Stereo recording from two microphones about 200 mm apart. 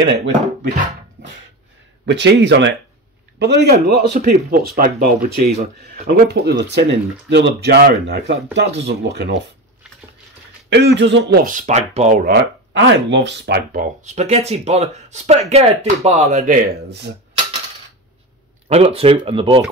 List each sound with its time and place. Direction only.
2.0 s speech: 60° right (ahead or behind)
10.7 s speech: 60° right (ahead or behind)
12.8 s speech: 60° right (ahead or behind); by 17.0 s 45° right (ahead or behind)
18.7 s speech: 30° right (ahead or behind)